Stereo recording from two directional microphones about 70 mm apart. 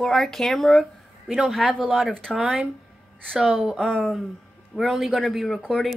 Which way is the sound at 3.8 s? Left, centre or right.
Centre.